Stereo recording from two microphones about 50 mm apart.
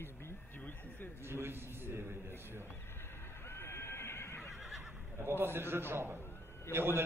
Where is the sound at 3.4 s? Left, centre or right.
Left.